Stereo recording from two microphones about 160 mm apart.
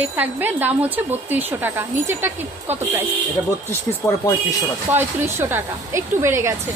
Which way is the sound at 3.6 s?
15° left (ahead or behind).